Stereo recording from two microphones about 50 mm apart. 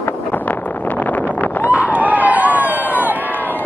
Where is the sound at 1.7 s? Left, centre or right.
Right.